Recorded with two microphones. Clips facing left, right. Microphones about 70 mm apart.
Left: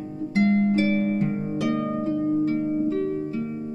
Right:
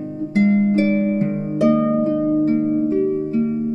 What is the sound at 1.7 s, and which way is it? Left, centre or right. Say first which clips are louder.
Harp: right 8 dB; right.